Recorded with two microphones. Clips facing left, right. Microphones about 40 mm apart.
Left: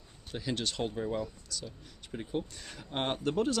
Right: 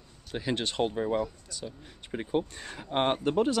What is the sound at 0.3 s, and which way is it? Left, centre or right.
Speech, right.